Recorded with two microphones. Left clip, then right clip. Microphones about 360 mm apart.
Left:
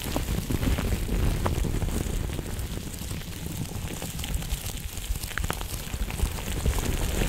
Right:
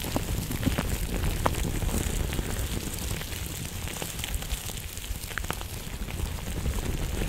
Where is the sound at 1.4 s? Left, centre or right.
Right.